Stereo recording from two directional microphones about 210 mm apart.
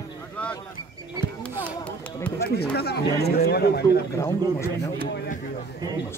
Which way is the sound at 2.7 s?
50° left (ahead or behind).